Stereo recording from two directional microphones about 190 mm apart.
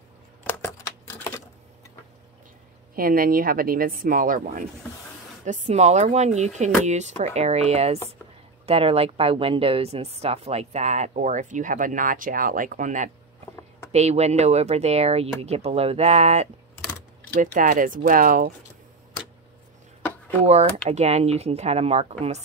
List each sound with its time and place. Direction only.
0.5 s a sound: 10° left (ahead or behind)
3.0 s a woman's voice: 50° right (ahead or behind)
20.4 s speech: 35° right (ahead or behind)